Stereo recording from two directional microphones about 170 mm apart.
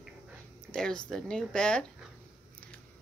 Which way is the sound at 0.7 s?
5° left (ahead or behind).